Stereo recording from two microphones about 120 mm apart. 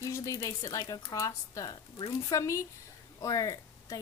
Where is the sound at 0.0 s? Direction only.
30° left (ahead or behind).